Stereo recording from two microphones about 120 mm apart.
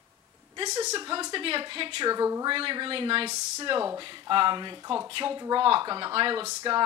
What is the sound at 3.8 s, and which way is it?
A woman's voice, 30° right (ahead or behind).